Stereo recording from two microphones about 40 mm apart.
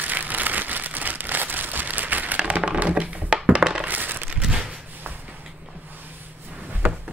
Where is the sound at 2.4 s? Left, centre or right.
Right.